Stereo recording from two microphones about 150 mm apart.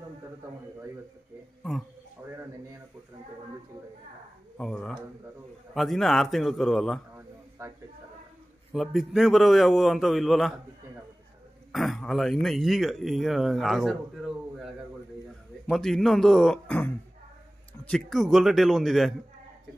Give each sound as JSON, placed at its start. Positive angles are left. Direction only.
{"t": 2.2, "sound": "speech", "side_deg": -15}
{"t": 4.6, "sound": "speech", "side_deg": 5}
{"t": 7.2, "sound": "a sound", "side_deg": -15}
{"t": 8.7, "sound": "speech", "side_deg": 0}
{"t": 11.7, "sound": "speech", "side_deg": 0}
{"t": 15.7, "sound": "speech", "side_deg": 0}